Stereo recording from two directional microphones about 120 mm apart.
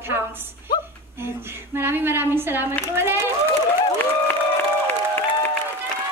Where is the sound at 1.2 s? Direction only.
20° right (ahead or behind).